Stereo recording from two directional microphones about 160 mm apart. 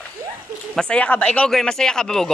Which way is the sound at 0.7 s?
5° left (ahead or behind).